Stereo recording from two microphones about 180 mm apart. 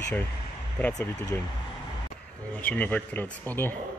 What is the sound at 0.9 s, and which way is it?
Speech, 20° left (ahead or behind).